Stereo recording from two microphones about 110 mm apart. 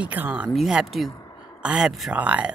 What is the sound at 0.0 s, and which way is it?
Speech, 15° right (ahead or behind).